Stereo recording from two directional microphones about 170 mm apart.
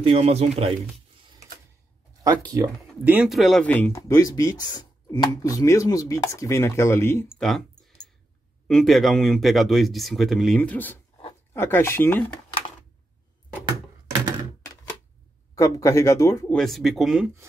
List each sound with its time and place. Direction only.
0.0 s speech: 35° right (ahead or behind)
2.2 s speech: 20° right (ahead or behind)
3.0 s speech: 10° right (ahead or behind); by 7.2 s 15° left (ahead or behind)
7.2 s speech: centre (ahead or behind)
15.5 s speech: 20° left (ahead or behind)
16.5 s speech: centre (ahead or behind)